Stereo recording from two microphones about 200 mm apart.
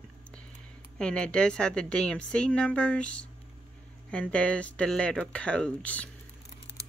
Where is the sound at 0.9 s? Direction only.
5° left (ahead or behind).